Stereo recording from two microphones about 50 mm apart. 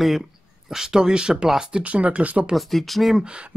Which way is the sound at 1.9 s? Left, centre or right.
Right.